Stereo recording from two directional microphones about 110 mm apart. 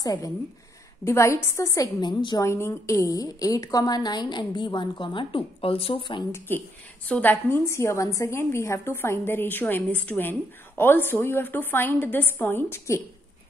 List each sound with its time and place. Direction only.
0.0 s a woman's voice: 35° left (ahead or behind)
2.4 s a woman's voice: 25° left (ahead or behind); by 6.2 s 50° left (ahead or behind)
6.3 s a woman's voice: 20° left (ahead or behind)